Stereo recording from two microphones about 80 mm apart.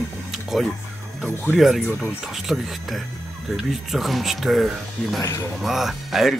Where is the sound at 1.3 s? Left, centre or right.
Left.